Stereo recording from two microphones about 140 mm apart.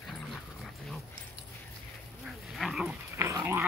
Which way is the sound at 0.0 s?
Centre (ahead or behind).